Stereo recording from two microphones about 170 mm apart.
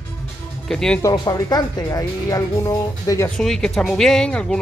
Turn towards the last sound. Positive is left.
turn(degrees=5)  # may be behind; listen again after turning